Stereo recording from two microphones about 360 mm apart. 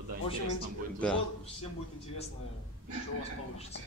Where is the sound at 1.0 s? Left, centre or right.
Centre.